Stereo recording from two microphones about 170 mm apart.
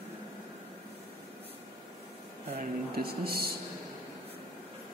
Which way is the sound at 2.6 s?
65° right (ahead or behind).